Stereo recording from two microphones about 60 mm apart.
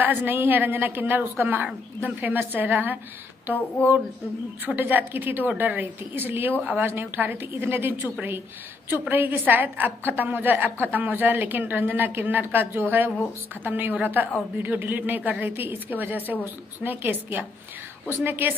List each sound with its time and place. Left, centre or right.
0.0 s a woman's voice: right
3.5 s a sound: left
4.6 s a woman's voice: right